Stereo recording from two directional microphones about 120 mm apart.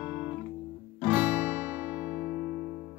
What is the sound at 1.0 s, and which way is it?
Guitar, 15° right (ahead or behind).